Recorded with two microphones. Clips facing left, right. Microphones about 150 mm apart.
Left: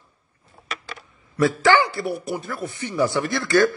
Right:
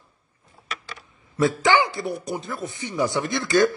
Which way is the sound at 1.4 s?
15° right (ahead or behind).